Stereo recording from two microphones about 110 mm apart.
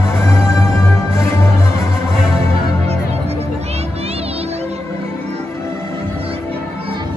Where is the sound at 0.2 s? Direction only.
25° left (ahead or behind).